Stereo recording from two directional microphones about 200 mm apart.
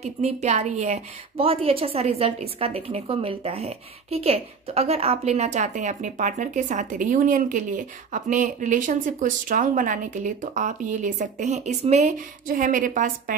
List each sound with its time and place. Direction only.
0.0 s a woman's voice: 35° right (ahead or behind)